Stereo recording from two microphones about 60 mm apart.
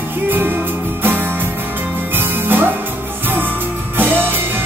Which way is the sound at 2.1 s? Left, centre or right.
Right.